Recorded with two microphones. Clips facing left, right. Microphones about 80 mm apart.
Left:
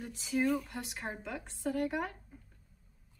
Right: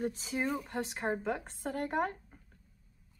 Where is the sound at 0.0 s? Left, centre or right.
Right.